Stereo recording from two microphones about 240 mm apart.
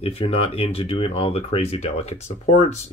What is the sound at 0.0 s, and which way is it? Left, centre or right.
Speech, left.